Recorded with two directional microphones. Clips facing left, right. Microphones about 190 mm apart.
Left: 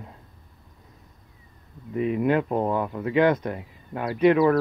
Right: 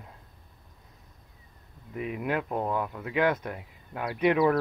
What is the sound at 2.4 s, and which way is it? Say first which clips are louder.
Speech: left 6 dB; 20° left (ahead or behind).